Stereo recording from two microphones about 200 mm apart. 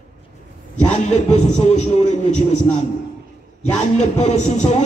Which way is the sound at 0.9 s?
35° left (ahead or behind).